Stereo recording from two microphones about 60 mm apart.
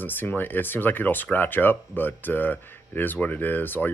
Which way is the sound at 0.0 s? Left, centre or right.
Left.